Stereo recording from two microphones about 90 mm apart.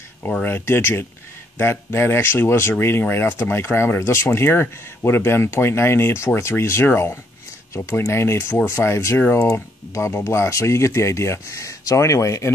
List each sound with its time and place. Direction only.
0.4 s speech: 25° left (ahead or behind)
9.5 s speech: 35° left (ahead or behind)